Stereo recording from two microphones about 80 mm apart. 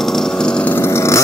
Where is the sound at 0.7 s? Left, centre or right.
Left.